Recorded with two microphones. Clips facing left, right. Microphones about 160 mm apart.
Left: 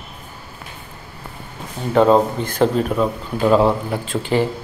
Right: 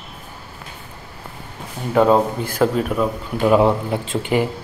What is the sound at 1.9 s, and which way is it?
Speech, 5° right (ahead or behind).